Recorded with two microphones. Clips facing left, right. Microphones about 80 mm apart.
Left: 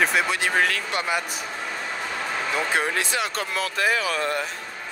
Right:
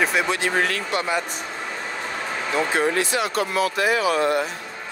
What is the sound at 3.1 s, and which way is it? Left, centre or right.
Speech, centre.